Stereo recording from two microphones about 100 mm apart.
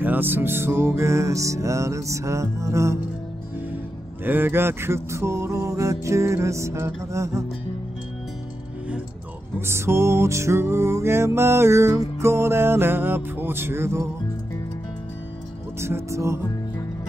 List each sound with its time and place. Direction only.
0.0 s music: 20° right (ahead or behind)
4.2 s music: 20° right (ahead or behind)
9.6 s music: 25° right (ahead or behind)
15.8 s music: 30° right (ahead or behind)